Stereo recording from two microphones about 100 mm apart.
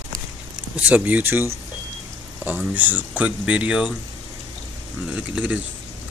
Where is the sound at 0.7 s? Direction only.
15° right (ahead or behind).